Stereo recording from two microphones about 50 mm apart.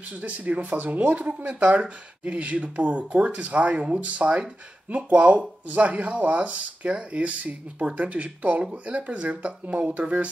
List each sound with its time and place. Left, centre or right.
0.1 s speech: right